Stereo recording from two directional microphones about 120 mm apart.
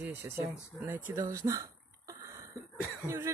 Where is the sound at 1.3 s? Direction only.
25° right (ahead or behind).